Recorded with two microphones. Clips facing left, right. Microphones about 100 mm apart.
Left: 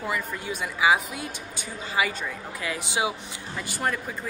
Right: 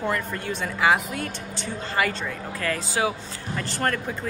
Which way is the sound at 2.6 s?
15° left (ahead or behind).